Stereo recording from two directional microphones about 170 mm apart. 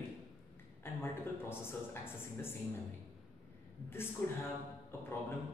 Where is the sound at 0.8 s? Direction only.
15° left (ahead or behind).